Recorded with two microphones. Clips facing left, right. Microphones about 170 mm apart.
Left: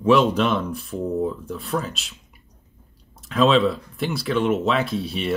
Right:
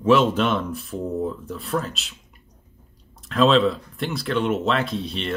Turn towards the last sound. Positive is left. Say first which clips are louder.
# left 2 dB
turn(degrees=5)  # may be behind; listen again after turning